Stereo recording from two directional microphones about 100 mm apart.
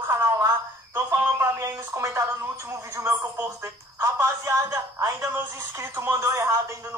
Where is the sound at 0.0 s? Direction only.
25° right (ahead or behind).